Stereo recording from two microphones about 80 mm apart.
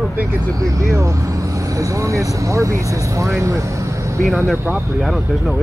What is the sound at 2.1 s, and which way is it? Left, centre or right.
Speech, right.